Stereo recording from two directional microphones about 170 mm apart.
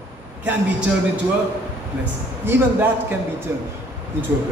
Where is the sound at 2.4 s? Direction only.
15° right (ahead or behind).